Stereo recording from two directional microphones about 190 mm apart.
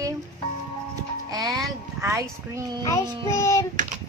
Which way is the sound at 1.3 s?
20° right (ahead or behind).